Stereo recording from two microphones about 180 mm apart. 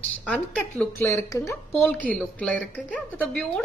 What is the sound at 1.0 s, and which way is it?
A woman's voice, 15° left (ahead or behind).